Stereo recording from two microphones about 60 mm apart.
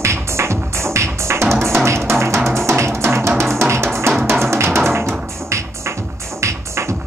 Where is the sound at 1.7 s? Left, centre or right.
Right.